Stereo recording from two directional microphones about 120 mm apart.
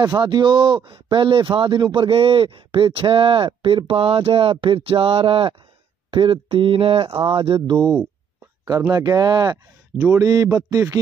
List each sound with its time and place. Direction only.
0.0 s a man's voice: 35° right (ahead or behind)